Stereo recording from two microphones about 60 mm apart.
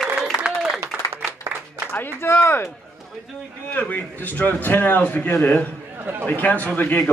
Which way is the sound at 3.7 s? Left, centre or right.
Left.